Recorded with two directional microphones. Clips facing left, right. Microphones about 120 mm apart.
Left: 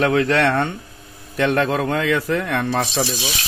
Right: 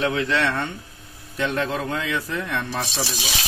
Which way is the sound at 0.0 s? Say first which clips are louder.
Left 5 dB; 60° left (ahead or behind).